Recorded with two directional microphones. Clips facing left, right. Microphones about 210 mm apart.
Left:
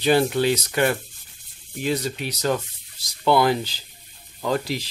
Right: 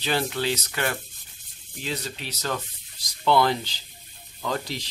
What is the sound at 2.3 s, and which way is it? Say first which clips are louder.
Speech: left 6 dB; 15° left (ahead or behind).